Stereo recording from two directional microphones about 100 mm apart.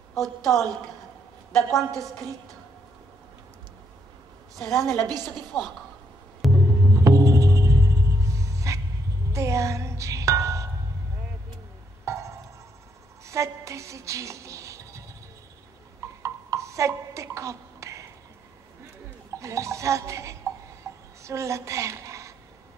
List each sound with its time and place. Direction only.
0.1 s a woman's voice: centre (ahead or behind)
1.9 s a woman's voice: 35° right (ahead or behind)
4.6 s a woman's voice: centre (ahead or behind)
5.0 s a woman's voice: 40° right (ahead or behind)
6.4 s music: centre (ahead or behind)
6.9 s music: 35° right (ahead or behind)
12.0 s a sound: 30° right (ahead or behind)
19.3 s speech: 30° right (ahead or behind)
20.8 s a sound: 30° right (ahead or behind)